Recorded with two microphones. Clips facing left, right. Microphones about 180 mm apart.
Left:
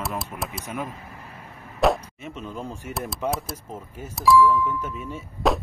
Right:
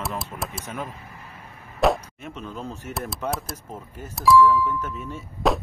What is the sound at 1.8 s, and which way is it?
Speech, centre (ahead or behind).